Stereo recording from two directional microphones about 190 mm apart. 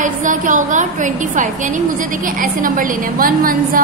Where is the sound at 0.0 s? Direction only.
40° right (ahead or behind).